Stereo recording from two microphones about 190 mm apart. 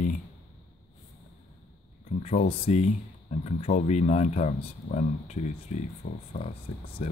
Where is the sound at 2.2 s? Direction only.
35° left (ahead or behind).